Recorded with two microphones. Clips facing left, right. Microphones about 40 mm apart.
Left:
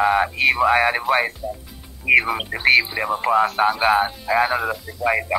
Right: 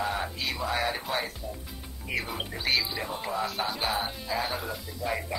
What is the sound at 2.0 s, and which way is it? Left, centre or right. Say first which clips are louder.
Speech: left 15 dB; left.